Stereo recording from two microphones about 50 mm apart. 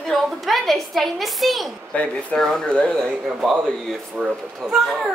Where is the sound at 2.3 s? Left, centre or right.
Centre.